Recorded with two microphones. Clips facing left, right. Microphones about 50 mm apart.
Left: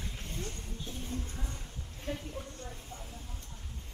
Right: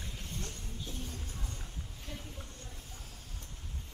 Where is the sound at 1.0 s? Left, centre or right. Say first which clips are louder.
Left 5 dB; left.